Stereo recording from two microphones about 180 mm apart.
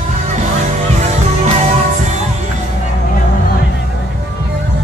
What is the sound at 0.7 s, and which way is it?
Music, 35° right (ahead or behind).